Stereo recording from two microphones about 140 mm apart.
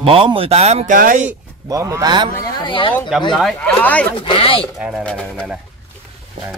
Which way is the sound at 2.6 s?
35° left (ahead or behind).